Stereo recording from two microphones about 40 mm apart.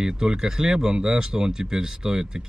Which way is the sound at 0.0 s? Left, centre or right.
Centre.